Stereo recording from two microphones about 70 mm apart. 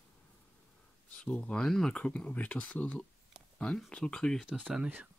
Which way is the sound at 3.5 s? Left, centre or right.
Centre.